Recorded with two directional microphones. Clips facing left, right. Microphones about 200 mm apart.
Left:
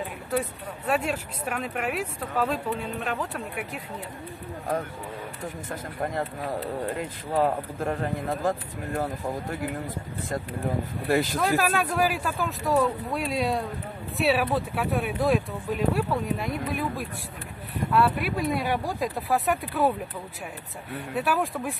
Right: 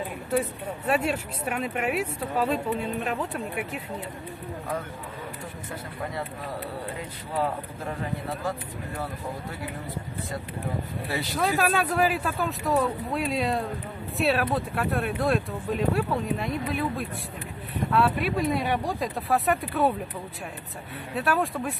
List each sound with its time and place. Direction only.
0.8 s speech: 5° right (ahead or behind)
5.9 s speech: 50° left (ahead or behind)
11.3 s speech: centre (ahead or behind)
17.7 s speech: centre (ahead or behind)
20.9 s speech: centre (ahead or behind)